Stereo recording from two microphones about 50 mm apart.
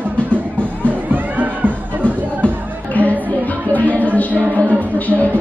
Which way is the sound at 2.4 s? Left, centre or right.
Left.